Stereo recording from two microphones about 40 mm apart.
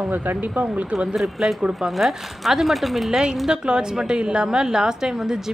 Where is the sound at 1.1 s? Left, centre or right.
Centre.